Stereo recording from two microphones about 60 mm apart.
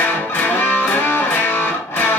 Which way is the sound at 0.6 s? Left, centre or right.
Left.